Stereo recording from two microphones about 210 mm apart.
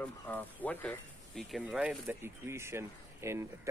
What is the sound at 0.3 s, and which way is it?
Speech, 10° left (ahead or behind).